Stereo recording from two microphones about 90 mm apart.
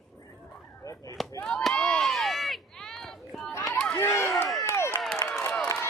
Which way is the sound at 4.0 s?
30° left (ahead or behind).